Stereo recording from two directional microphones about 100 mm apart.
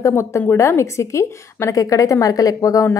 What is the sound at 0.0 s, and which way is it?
A woman's voice, 30° left (ahead or behind).